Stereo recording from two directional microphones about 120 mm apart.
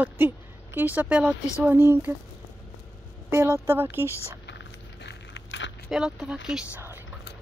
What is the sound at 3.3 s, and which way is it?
Speech, 20° right (ahead or behind).